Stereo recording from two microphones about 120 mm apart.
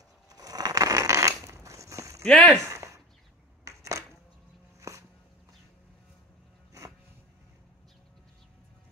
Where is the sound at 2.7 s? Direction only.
25° right (ahead or behind).